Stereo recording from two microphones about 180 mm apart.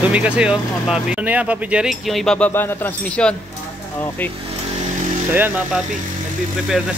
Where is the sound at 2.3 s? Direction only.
10° left (ahead or behind).